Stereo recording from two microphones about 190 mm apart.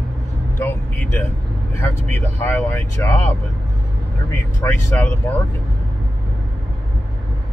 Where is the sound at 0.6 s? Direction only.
10° left (ahead or behind).